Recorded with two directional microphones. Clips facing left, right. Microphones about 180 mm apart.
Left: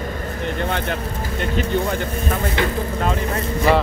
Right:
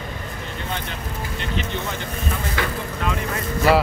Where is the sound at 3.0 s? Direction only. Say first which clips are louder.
Left 2 dB; 35° left (ahead or behind).